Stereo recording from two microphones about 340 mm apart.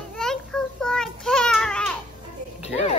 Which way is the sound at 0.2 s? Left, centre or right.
Centre.